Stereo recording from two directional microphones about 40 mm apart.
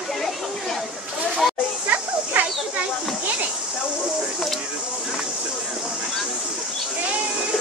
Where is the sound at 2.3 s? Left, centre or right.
Right.